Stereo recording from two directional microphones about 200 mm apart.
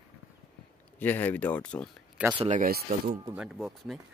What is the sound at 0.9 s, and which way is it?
Speech, 10° left (ahead or behind).